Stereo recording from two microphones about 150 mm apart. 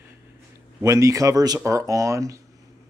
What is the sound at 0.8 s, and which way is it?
Speech, 20° right (ahead or behind).